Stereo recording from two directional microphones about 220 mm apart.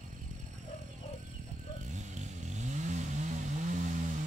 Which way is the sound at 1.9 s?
30° right (ahead or behind).